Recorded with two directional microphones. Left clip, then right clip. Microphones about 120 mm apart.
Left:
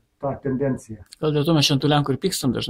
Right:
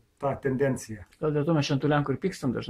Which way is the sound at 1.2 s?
25° left (ahead or behind).